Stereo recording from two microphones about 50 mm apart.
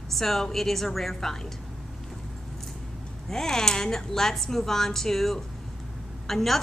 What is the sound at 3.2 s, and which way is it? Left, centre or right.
A woman's voice, centre.